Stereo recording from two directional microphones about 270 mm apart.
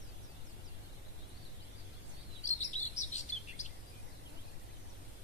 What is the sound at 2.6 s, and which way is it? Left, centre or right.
Chirp, left.